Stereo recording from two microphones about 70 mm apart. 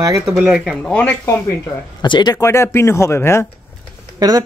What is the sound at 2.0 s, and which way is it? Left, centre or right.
Speech, left.